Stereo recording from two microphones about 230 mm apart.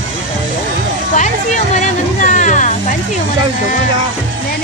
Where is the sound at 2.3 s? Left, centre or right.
Left.